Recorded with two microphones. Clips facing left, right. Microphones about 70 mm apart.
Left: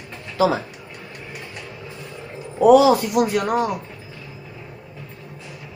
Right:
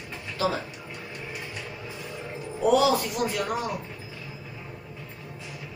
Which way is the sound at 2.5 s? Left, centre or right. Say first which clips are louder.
Left 9 dB; left.